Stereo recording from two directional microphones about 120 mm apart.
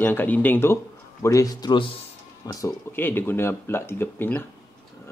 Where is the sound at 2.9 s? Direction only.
15° left (ahead or behind).